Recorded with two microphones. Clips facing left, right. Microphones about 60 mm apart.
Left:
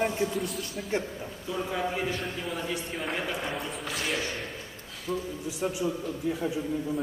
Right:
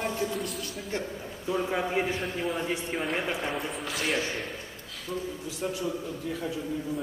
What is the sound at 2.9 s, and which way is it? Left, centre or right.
A man's voice, centre.